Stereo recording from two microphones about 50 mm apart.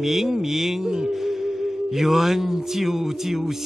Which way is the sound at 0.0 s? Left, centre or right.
Centre.